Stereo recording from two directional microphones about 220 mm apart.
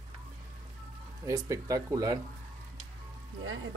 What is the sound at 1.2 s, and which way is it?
Speech, 15° right (ahead or behind).